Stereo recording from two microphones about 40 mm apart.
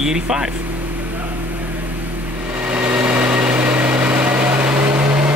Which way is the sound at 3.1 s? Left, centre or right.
Right.